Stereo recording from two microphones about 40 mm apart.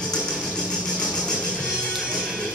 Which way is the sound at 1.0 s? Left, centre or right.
Left.